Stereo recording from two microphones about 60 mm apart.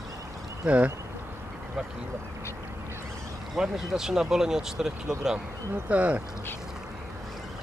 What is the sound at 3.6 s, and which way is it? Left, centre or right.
Speech, centre.